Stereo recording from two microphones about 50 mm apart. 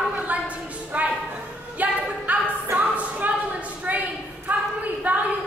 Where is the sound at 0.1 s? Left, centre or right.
Right.